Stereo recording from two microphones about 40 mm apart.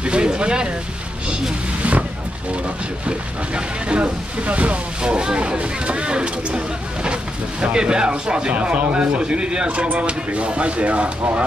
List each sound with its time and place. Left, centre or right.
0.0 s speech: right
1.8 s vehicle: right
3.1 s speech: right
5.0 s speech: right